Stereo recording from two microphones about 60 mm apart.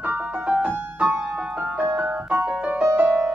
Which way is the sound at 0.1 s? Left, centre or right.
Right.